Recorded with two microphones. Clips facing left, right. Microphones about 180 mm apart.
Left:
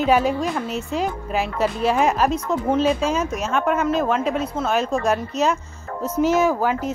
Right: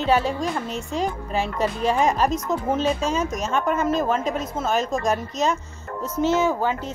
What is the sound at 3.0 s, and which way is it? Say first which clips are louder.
Speech: left 2 dB; 35° right (ahead or behind).